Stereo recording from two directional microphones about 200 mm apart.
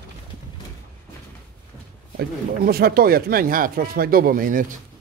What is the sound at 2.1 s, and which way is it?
Speech, 50° right (ahead or behind).